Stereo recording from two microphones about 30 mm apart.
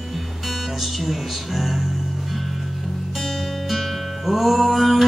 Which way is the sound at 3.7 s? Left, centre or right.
Centre.